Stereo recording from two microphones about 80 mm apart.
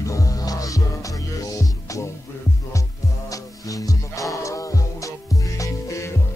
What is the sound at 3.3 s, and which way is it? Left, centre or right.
Music, left.